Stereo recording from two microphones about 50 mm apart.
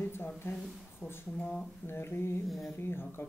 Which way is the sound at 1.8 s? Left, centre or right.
Left.